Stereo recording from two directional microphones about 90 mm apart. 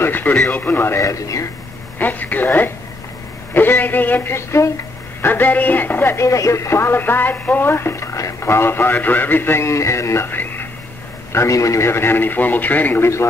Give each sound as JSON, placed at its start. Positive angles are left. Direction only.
{"t": 0.0, "sound": "speech", "side_deg": 25}
{"t": 2.0, "sound": "speech", "side_deg": 20}
{"t": 5.2, "sound": "speech", "side_deg": 20}
{"t": 6.2, "sound": "speech", "side_deg": 35}
{"t": 11.3, "sound": "speech", "side_deg": 35}